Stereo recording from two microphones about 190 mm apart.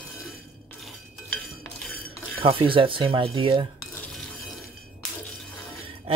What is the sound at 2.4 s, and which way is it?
Speech, 30° right (ahead or behind).